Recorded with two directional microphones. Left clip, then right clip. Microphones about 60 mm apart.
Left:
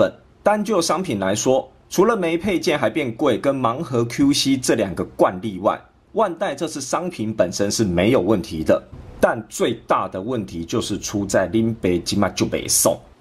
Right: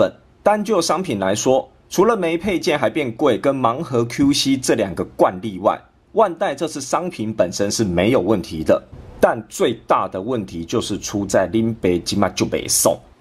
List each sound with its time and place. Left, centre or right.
0.0 s speech: right